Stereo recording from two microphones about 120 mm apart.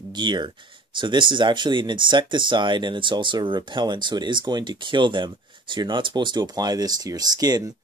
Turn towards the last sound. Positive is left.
turn(degrees=-30)  # may be behind; listen again after turning